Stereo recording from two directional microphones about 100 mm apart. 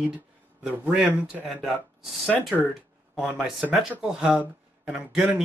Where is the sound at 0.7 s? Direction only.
5° right (ahead or behind).